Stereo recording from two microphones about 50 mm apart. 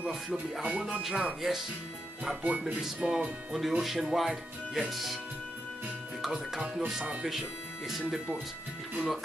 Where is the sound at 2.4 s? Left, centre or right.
Right.